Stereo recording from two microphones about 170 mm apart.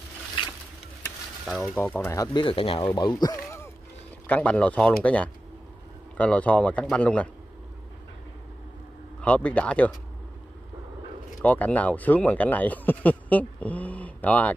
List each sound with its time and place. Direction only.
1.4 s speech: 5° right (ahead or behind)
1.8 s speech: 15° left (ahead or behind)
2.4 s speech: 35° left (ahead or behind); by 7.2 s 5° left (ahead or behind)
9.2 s speech: 5° left (ahead or behind)
11.4 s speech: 10° left (ahead or behind)